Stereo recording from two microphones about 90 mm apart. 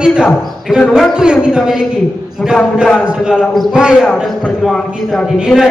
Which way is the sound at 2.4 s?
10° left (ahead or behind).